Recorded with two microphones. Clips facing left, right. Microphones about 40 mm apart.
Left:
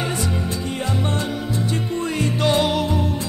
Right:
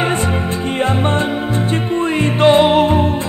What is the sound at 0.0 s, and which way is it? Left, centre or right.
Music, right.